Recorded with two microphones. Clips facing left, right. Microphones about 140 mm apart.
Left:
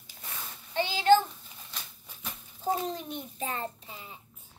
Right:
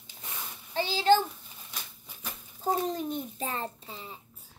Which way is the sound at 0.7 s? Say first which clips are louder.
Even; 35° right (ahead or behind).